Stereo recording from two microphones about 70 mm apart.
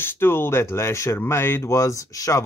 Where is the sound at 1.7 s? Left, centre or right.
Left.